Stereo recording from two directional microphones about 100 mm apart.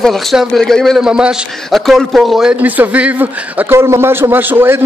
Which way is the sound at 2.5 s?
15° right (ahead or behind).